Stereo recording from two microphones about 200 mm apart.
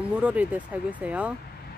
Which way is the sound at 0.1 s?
5° right (ahead or behind).